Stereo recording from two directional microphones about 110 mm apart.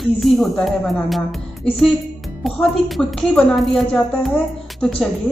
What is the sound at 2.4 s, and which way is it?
A woman's voice, centre (ahead or behind).